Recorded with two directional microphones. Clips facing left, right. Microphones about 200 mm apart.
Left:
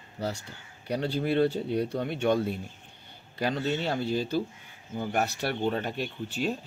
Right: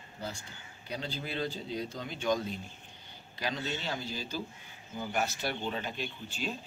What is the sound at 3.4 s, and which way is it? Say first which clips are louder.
A man's voice: left 7 dB; 55° left (ahead or behind).